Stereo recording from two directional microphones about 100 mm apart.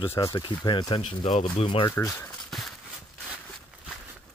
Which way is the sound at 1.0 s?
90° left.